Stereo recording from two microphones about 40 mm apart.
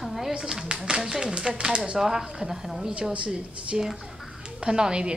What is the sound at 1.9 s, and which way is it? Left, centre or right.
A woman's voice, centre.